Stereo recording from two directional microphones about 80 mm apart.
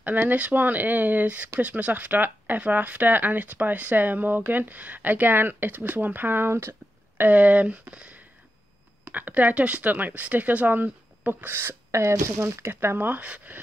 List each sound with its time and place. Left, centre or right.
0.0 s speech: right